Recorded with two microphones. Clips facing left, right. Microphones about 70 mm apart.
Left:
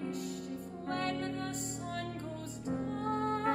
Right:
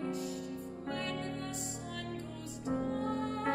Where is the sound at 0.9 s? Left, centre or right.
Left.